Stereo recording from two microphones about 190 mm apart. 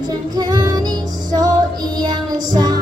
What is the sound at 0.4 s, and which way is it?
Music, 20° right (ahead or behind).